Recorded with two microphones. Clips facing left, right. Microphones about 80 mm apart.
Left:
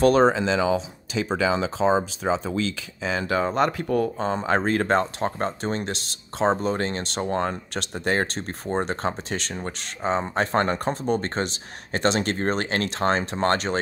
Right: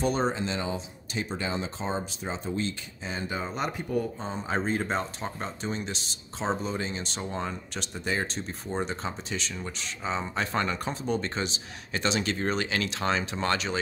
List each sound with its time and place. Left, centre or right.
0.0 s speech: left